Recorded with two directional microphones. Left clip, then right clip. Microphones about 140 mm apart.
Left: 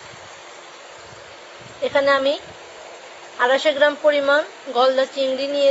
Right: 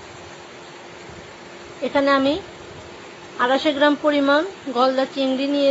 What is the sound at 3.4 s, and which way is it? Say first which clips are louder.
A woman's voice: left 2 dB; 10° left (ahead or behind).